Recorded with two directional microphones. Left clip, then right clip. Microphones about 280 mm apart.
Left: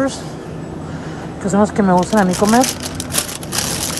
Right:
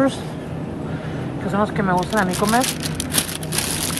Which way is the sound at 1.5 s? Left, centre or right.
Centre.